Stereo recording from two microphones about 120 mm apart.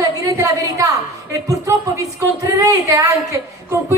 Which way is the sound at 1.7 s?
25° right (ahead or behind).